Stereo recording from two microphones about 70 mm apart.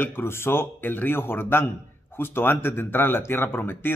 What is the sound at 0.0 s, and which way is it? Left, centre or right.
Speech, left.